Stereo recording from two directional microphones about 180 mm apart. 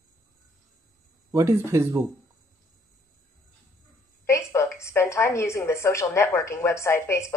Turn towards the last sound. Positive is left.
turn(degrees=15)  # may be behind; listen again after turning